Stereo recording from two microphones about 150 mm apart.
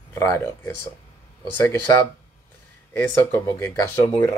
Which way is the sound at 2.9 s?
15° left (ahead or behind).